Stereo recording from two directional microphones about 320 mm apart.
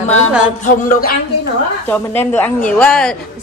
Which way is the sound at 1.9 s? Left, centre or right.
Centre.